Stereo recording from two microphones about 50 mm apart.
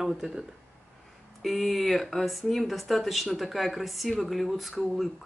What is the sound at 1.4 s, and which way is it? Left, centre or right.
Speech, centre.